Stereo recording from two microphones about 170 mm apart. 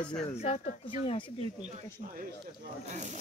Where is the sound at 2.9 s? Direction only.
45° right (ahead or behind).